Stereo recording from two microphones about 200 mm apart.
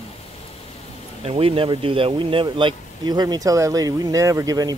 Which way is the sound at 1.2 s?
30° right (ahead or behind).